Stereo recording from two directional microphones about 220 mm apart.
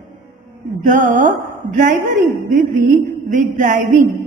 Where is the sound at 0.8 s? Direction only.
35° right (ahead or behind).